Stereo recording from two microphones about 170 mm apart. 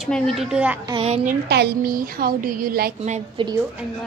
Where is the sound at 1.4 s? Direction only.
75° right (ahead or behind).